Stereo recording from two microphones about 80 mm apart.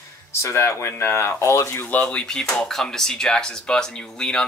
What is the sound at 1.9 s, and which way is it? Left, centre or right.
Speech, centre.